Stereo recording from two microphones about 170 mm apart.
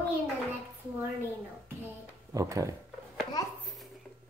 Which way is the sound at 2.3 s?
20° right (ahead or behind).